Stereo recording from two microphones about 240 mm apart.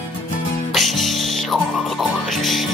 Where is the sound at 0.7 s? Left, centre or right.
Centre.